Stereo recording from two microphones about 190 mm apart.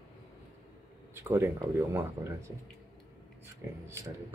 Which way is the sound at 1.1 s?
15° right (ahead or behind).